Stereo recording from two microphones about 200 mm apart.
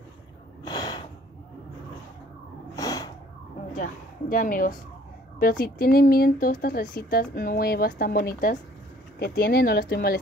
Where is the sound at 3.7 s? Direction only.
40° left (ahead or behind).